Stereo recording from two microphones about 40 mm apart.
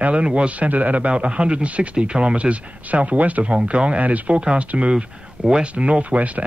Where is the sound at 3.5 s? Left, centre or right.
Right.